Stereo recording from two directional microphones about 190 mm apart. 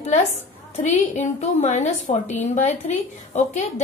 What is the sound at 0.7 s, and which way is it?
A woman's voice, 40° left (ahead or behind).